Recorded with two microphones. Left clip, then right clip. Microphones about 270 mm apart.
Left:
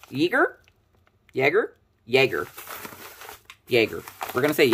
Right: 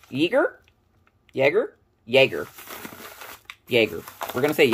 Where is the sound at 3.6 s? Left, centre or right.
Centre.